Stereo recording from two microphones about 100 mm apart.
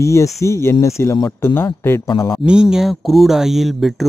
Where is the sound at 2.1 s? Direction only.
55° left (ahead or behind).